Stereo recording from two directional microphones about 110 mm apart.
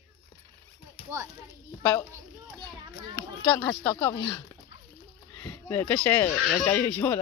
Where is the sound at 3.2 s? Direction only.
30° left (ahead or behind).